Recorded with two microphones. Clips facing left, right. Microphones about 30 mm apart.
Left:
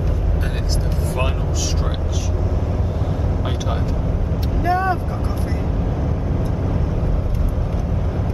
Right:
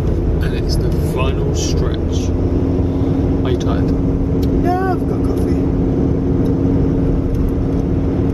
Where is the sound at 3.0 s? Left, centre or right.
Centre.